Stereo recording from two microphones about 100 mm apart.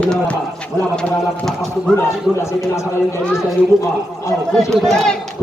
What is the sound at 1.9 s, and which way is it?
A man's voice, 30° left (ahead or behind).